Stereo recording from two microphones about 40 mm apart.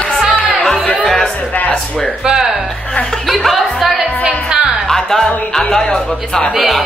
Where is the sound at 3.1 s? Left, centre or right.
Centre.